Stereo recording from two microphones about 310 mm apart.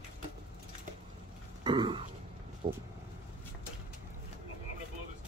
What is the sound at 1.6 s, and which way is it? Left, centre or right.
Throat clearing, centre.